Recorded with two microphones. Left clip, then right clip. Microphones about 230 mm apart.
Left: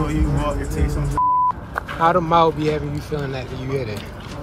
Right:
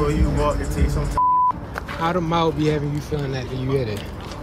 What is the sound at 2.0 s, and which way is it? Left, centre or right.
Speech, centre.